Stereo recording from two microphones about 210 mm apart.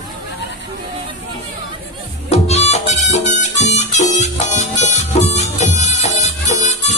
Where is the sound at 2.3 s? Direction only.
30° left (ahead or behind).